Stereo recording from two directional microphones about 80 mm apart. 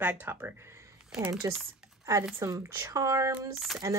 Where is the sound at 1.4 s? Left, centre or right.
Right.